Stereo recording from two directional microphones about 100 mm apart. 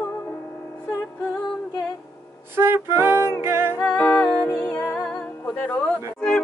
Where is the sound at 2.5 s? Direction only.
25° right (ahead or behind).